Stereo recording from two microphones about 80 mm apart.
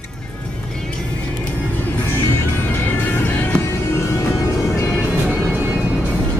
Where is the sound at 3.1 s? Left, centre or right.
Left.